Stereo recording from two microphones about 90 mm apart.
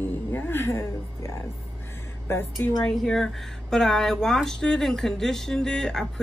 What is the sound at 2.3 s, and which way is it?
Speech, 30° left (ahead or behind).